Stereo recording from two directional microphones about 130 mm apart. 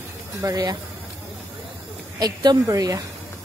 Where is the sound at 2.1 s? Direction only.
30° right (ahead or behind).